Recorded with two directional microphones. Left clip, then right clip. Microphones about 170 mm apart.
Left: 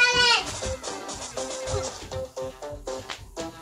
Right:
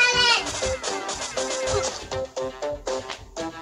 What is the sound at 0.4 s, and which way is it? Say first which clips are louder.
Music: right 4 dB; 20° right (ahead or behind).